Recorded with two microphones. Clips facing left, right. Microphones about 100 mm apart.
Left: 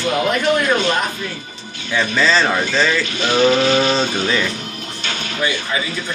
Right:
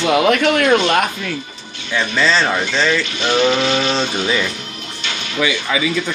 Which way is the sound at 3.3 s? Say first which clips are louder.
Left 2 dB; 35° left (ahead or behind).